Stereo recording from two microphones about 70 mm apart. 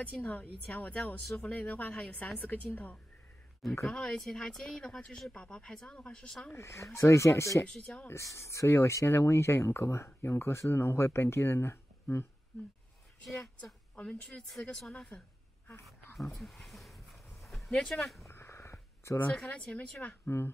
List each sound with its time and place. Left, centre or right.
0.0 s speech: left
3.8 s speech: centre
6.5 s speech: left
7.6 s speech: centre
8.1 s speech: left
13.9 s speech: centre
16.3 s a sound: centre
18.2 s a sound: left
19.3 s speech: centre
20.2 s speech: left